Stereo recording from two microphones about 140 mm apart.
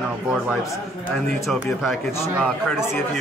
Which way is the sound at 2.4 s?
5° right (ahead or behind).